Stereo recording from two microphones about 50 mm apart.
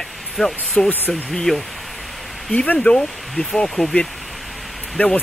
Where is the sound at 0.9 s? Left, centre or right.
Left.